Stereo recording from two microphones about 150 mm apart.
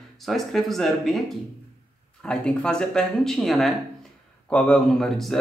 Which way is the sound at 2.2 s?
5° left (ahead or behind).